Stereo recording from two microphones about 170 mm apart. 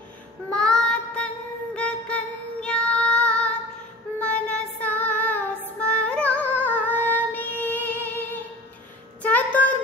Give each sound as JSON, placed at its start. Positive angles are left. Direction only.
{"t": 0.5, "sound": "child singing", "side_deg": 5}
{"t": 1.8, "sound": "music", "side_deg": 5}
{"t": 4.2, "sound": "child singing", "side_deg": 10}
{"t": 9.2, "sound": "a sound", "side_deg": 10}